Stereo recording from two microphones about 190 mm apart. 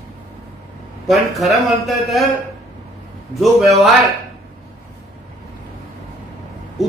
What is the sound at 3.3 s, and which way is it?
Speech, centre (ahead or behind).